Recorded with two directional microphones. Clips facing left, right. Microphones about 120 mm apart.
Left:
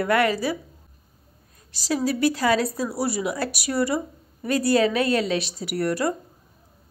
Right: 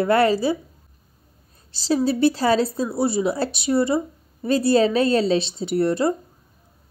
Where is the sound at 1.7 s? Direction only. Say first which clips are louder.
Right 4 dB; 30° right (ahead or behind).